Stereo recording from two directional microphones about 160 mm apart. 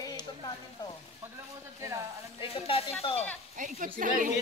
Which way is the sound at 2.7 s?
35° left (ahead or behind).